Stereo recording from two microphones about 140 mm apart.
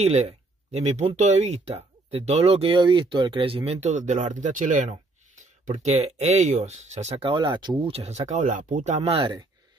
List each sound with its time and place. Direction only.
0.0 s speech: 50° right (ahead or behind); by 7.9 s 30° right (ahead or behind)
7.9 s speech: 50° right (ahead or behind)